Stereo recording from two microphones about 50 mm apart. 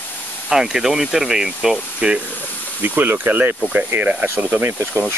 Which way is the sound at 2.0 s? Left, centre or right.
Right.